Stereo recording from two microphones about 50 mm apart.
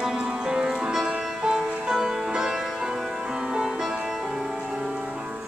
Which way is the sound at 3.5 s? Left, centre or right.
Centre.